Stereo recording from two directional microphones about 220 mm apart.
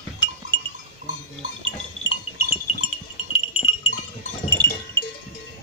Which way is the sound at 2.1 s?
75° left (ahead or behind).